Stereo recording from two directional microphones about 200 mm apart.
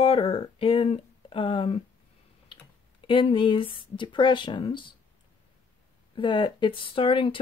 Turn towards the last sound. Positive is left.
turn(degrees=25)  # may be behind; listen again after turning